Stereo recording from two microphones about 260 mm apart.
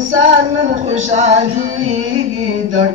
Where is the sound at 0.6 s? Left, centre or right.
Right.